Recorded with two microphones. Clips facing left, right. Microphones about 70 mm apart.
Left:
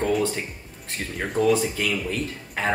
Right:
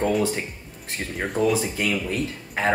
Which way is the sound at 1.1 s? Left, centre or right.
Centre.